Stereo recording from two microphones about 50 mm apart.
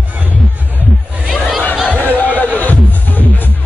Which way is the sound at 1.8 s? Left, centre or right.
Left.